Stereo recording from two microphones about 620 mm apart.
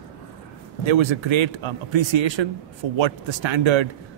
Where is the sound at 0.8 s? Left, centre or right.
Right.